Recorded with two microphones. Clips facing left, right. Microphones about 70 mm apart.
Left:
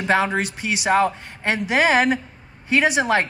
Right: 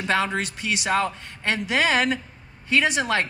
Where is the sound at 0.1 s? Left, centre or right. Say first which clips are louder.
Left 4 dB; centre.